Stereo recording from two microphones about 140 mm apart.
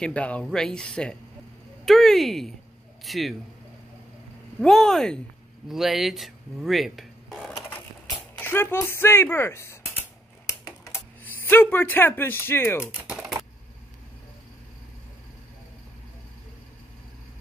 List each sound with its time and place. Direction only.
0.0 s a man's voice: 10° left (ahead or behind)
4.6 s speech: centre (ahead or behind)
8.4 s speech: 15° left (ahead or behind)
10.9 s typing: 15° left (ahead or behind)
12.1 s speech: 15° left (ahead or behind)
12.9 s typing: 5° right (ahead or behind)